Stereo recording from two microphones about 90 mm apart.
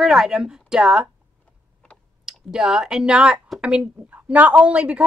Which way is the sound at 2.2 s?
5° right (ahead or behind).